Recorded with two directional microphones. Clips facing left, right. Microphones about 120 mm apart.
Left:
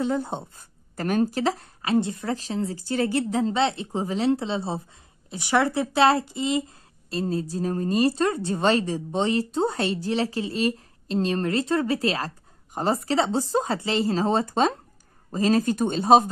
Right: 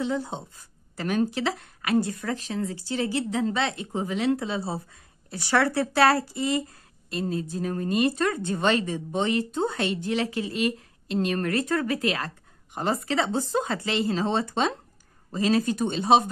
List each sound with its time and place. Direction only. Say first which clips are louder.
0.0 s a woman's voice: left 3 dB; 50° left (ahead or behind); by 2.8 s 30° left (ahead or behind)
2.8 s speech: left 5 dB; 50° left (ahead or behind)
3.3 s speech: left 3 dB; 35° left (ahead or behind)
7.1 s a woman's voice: left 2 dB; 35° left (ahead or behind)